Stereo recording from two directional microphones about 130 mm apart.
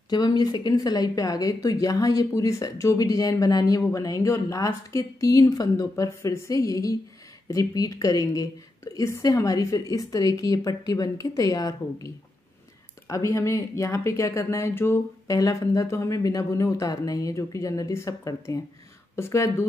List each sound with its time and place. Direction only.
0.1 s speech: 30° left (ahead or behind)
13.1 s speech: 25° left (ahead or behind)